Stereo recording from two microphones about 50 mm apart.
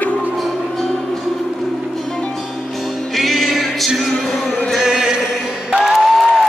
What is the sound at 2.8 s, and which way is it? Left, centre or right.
Music, centre.